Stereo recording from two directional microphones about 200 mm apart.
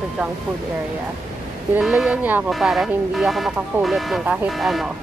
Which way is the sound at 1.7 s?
Centre (ahead or behind).